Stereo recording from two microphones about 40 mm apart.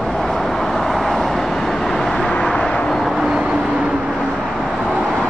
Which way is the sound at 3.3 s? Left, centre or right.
Right.